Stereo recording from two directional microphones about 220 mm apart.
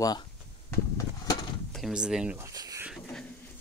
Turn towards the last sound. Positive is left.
turn(degrees=5)  # may be behind; listen again after turning